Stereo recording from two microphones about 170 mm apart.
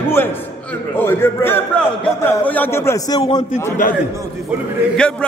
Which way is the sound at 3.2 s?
30° left (ahead or behind).